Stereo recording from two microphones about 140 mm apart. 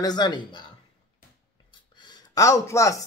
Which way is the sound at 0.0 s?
30° left (ahead or behind).